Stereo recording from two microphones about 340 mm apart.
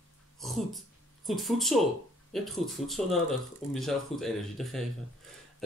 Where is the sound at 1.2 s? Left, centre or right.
Centre.